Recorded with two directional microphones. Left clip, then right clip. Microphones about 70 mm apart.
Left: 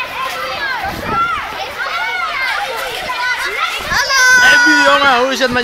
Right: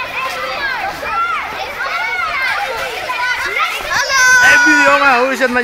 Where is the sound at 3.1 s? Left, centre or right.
Right.